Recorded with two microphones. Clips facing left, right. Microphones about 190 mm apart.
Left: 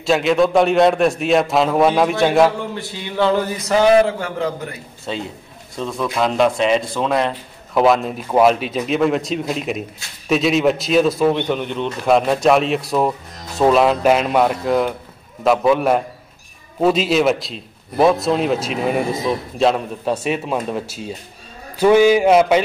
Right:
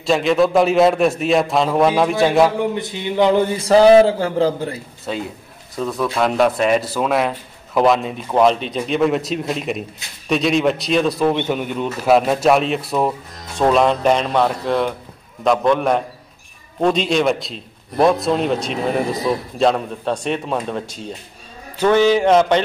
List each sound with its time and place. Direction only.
0.0 s a man's voice: centre (ahead or behind)
2.6 s speech: 20° right (ahead or behind)
3.4 s a man's voice: 30° right (ahead or behind)
5.1 s a man's voice: 5° right (ahead or behind)
21.7 s a sound: 10° left (ahead or behind)